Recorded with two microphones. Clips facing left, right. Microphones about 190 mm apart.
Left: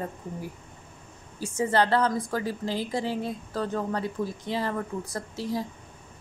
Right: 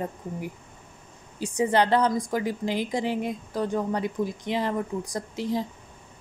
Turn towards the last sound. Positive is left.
turn(degrees=-20)  # may be behind; listen again after turning